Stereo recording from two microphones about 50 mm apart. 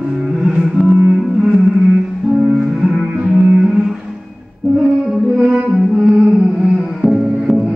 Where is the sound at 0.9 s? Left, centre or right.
Right.